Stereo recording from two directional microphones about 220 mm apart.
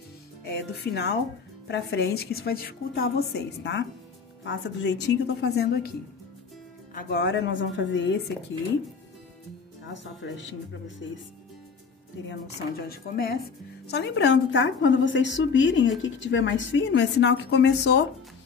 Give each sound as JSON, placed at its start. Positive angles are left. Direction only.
{"t": 0.5, "sound": "a woman's voice", "side_deg": 50}
{"t": 6.9, "sound": "a woman's voice", "side_deg": 45}
{"t": 10.2, "sound": "a woman's voice", "side_deg": 55}
{"t": 12.3, "sound": "a woman's voice", "side_deg": 45}